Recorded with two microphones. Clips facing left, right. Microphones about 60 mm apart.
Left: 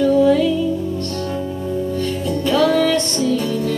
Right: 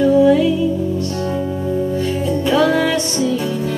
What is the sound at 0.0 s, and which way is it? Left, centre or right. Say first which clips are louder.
Music: right 2 dB; centre.